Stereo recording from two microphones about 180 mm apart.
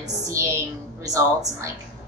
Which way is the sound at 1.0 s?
20° right (ahead or behind).